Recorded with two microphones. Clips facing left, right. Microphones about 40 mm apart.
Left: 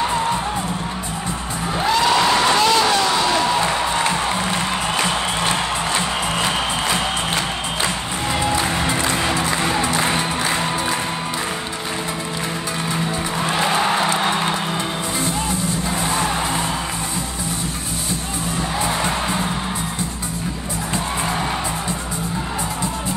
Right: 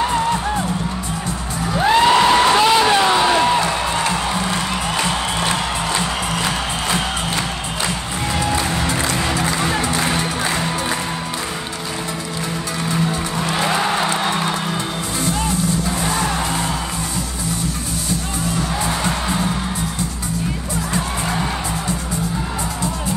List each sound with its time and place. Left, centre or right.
1.9 s music: right
2.4 s a sound: centre
5.0 s music: left
8.7 s music: centre
13.8 s music: centre
16.0 s vehicle: centre
19.0 s music: centre